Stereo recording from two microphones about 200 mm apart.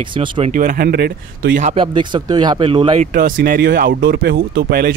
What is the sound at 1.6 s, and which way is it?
Speech, 25° right (ahead or behind).